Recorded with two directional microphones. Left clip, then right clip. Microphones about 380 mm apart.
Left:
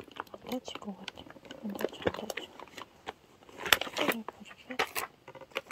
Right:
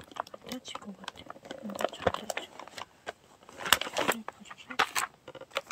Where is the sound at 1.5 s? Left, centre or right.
Right.